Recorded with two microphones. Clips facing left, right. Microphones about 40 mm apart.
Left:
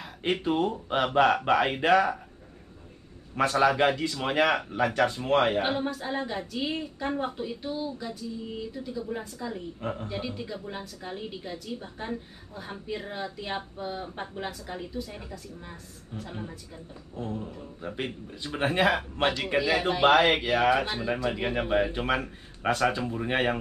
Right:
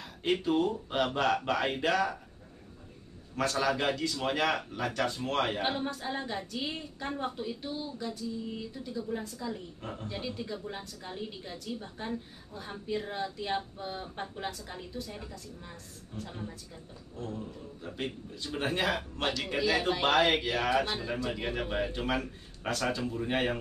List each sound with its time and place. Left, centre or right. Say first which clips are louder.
0.0 s a woman's voice: left 2 dB; left
3.3 s speech: left 7 dB; left
9.8 s a woman's voice: left 8 dB; left
10.0 s a woman's voice: left 3 dB; centre